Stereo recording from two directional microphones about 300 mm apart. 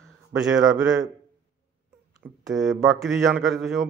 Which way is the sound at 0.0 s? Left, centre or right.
Centre.